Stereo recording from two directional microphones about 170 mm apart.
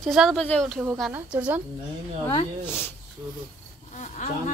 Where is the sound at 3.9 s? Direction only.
45° left (ahead or behind).